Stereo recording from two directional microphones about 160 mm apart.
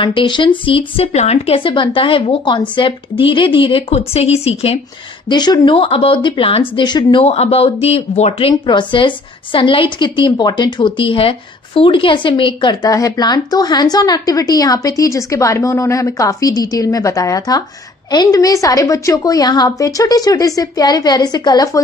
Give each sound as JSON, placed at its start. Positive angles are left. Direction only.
{"t": 0.0, "sound": "speech", "side_deg": 30}
{"t": 5.3, "sound": "speech", "side_deg": 25}